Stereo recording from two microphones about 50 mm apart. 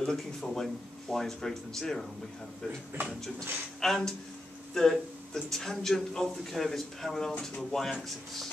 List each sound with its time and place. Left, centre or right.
0.0 s speech: centre
3.1 s speech: centre
7.3 s speech: centre
7.7 s speech: centre